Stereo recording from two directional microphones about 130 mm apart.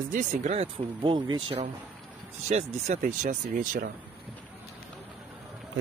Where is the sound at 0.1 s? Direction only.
75° right (ahead or behind).